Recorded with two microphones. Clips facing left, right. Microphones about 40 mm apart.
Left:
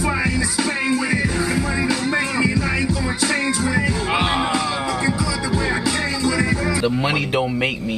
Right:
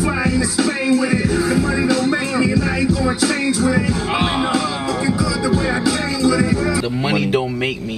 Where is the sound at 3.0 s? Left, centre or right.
Centre.